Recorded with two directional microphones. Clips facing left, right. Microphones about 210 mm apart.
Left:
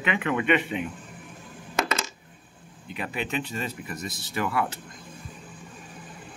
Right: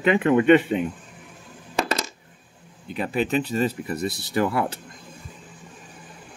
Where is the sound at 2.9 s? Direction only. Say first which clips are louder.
Right 7 dB; 35° right (ahead or behind).